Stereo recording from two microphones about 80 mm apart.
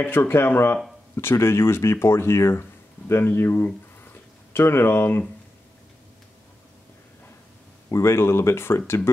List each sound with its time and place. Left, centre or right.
0.0 s speech: left
7.9 s speech: left